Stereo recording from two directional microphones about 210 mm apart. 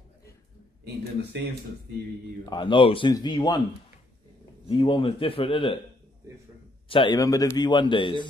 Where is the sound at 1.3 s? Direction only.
55° right (ahead or behind).